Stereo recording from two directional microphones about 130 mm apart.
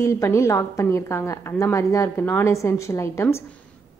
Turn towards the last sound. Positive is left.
turn(degrees=20)  # may be behind; listen again after turning